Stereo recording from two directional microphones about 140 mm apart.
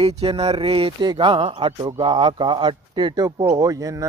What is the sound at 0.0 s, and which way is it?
Speech, 45° right (ahead or behind).